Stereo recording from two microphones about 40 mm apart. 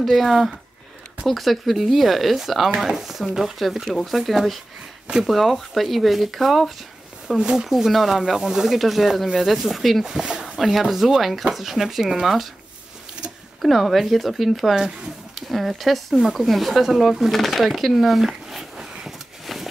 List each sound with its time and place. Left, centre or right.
0.0 s speech: centre
7.2 s speech: centre
7.7 s speech: centre
8.7 s speech: centre
10.0 s speech: centre
10.6 s speech: centre
13.6 s speech: centre